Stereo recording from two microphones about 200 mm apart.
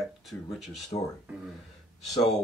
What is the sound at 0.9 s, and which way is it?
Speech, 25° left (ahead or behind).